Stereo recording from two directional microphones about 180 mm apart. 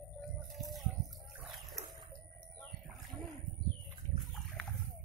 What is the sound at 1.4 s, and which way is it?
Dog, centre (ahead or behind).